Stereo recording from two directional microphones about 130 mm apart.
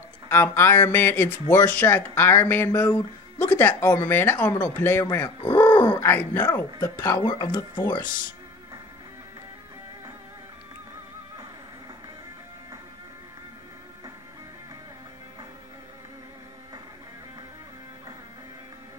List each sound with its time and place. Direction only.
0.3 s speech: 15° left (ahead or behind)
5.5 s a sound: 30° left (ahead or behind)
5.9 s speech: 15° left (ahead or behind)
7.1 s speech: 25° left (ahead or behind)